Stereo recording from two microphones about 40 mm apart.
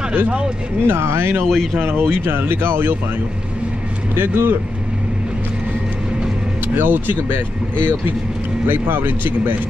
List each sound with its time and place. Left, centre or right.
0.8 s speech: right
1.4 s speech: centre
1.8 s speech: right
4.1 s speech: right
6.7 s speech: right